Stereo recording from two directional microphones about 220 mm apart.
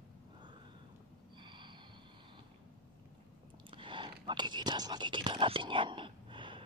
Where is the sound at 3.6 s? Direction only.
20° right (ahead or behind).